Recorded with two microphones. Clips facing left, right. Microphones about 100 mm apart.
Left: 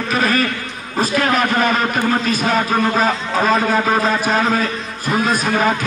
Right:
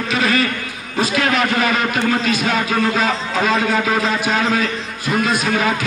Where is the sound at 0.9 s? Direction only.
40° left (ahead or behind).